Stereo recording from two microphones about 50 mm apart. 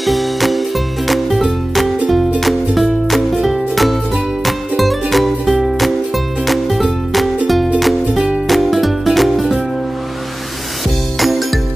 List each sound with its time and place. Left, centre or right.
0.0 s music: centre
11.1 s music: centre